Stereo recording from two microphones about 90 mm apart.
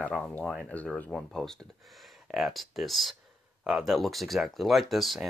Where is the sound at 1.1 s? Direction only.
5° left (ahead or behind).